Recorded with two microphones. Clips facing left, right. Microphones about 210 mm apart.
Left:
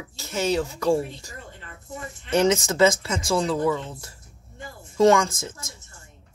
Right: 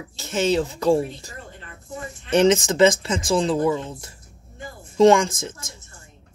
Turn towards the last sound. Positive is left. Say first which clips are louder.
# right 3 dB
turn(degrees=-15)  # may be behind; listen again after turning